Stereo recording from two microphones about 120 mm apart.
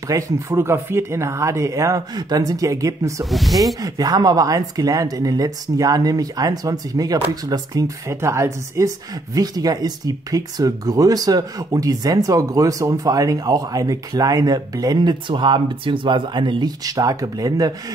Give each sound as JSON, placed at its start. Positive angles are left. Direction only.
{"t": 0.1, "sound": "speech", "side_deg": -20}
{"t": 3.3, "sound": "speech", "side_deg": 0}
{"t": 3.8, "sound": "speech", "side_deg": -35}